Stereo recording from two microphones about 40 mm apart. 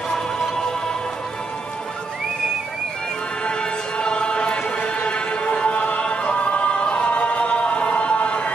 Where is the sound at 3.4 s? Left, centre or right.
Left.